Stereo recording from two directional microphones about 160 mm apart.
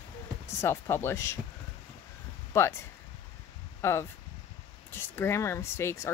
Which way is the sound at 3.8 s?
15° left (ahead or behind).